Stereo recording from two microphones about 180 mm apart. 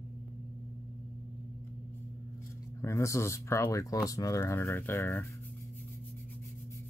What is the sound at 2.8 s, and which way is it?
Speech, 15° left (ahead or behind).